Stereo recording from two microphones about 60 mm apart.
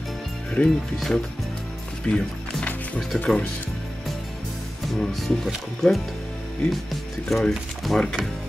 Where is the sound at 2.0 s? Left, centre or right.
Centre.